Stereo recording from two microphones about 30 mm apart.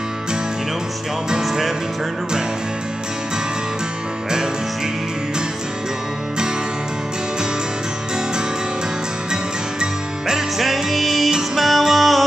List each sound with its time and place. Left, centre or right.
9.3 s music: right
10.6 s music: centre